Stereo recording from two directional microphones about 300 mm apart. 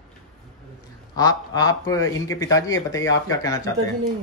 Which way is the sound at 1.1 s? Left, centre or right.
Centre.